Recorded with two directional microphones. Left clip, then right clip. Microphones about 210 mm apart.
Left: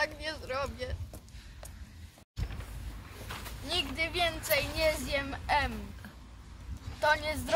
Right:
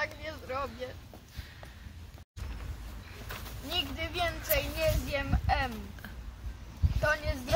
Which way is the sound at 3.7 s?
15° left (ahead or behind).